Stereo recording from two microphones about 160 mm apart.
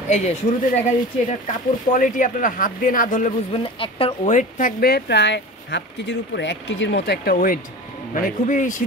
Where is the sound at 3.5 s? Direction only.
35° left (ahead or behind).